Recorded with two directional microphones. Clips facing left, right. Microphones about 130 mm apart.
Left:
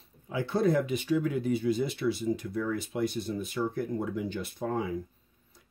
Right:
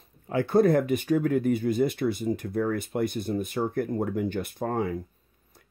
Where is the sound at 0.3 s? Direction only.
55° right (ahead or behind).